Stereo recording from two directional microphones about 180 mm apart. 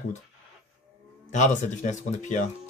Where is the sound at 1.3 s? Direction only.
40° left (ahead or behind).